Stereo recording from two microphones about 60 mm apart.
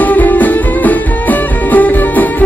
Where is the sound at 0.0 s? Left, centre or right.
Left.